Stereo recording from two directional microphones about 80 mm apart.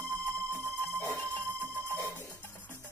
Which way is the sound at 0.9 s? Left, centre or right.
Left.